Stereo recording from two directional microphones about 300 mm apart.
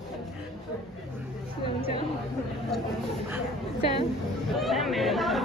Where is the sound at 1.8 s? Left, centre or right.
Centre.